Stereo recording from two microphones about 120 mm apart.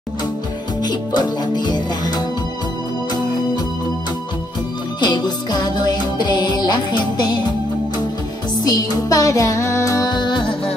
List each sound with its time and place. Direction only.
0.8 s music: 35° left (ahead or behind)
5.0 s music: 35° left (ahead or behind)
8.5 s music: 30° left (ahead or behind)